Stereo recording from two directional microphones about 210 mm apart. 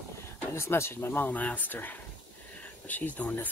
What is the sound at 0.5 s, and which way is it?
Speech, 15° left (ahead or behind).